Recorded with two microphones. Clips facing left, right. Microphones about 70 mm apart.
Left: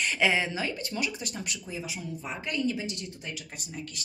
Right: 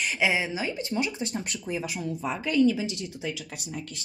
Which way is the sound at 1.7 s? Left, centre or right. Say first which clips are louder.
Right 6 dB; right.